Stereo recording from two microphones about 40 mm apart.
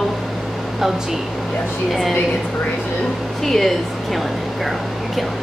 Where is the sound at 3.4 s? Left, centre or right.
Centre.